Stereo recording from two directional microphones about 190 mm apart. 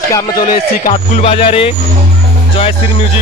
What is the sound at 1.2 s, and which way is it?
Speech, 30° left (ahead or behind).